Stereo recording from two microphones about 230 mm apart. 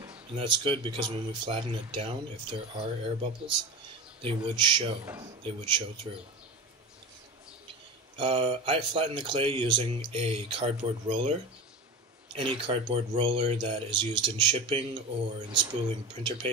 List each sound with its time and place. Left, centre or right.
0.4 s speech: right
8.2 s speech: right